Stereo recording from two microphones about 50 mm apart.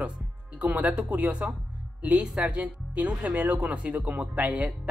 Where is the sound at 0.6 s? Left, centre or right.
Right.